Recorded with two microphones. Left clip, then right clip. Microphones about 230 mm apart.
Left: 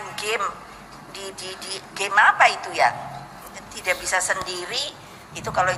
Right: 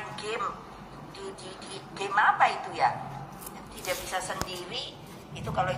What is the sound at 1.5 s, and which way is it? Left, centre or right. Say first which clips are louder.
A woman's voice: left 8 dB; left.